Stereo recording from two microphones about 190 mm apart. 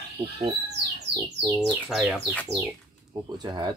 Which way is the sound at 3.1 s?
20° right (ahead or behind).